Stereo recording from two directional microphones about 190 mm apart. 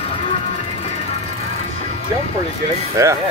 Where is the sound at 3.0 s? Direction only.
15° right (ahead or behind).